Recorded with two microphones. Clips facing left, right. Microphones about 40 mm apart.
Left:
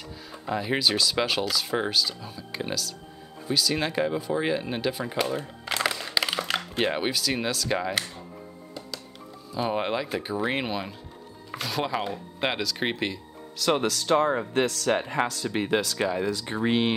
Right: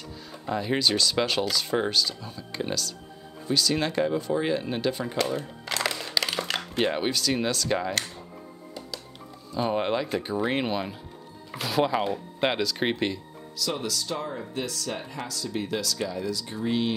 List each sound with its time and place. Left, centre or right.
0.3 s speech: centre
9.5 s speech: centre
13.6 s speech: left